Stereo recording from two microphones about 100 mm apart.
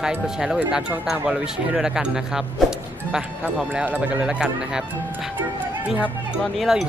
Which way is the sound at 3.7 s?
15° right (ahead or behind).